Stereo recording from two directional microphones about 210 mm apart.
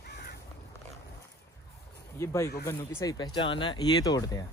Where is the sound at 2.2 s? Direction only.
15° left (ahead or behind).